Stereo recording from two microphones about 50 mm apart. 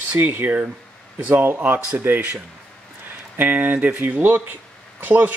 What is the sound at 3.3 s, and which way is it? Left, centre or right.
Speech, right.